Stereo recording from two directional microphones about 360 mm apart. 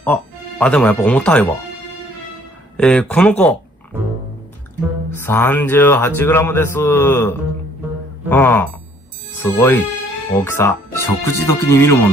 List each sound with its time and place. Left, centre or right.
0.0 s speech: centre
2.8 s speech: centre
5.1 s speech: centre